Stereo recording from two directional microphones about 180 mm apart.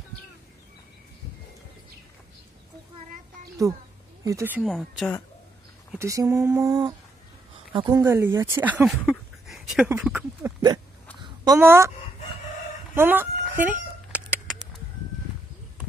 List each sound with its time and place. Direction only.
4.2 s speech: 15° right (ahead or behind)
4.6 s speech: centre (ahead or behind)
5.9 s a woman's voice: 15° right (ahead or behind)
8.0 s speech: 15° right (ahead or behind)
9.5 s a sound: centre (ahead or behind)
9.8 s speech: 10° right (ahead or behind)
11.1 s a sound: 25° right (ahead or behind)
12.9 s chicken: 10° right (ahead or behind)